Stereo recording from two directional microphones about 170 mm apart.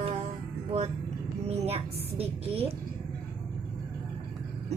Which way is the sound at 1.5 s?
35° right (ahead or behind).